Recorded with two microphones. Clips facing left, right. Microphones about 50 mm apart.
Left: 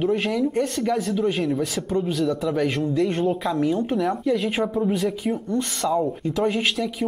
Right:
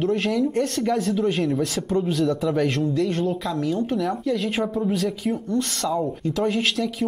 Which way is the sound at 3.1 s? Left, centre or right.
Centre.